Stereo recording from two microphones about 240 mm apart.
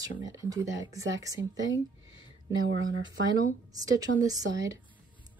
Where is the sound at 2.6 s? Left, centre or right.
Right.